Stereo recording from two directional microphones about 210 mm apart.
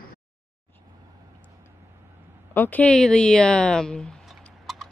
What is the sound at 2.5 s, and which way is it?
A woman's voice, 10° left (ahead or behind).